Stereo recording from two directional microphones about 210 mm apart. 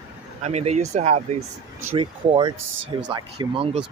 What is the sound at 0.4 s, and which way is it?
Speech, 30° right (ahead or behind).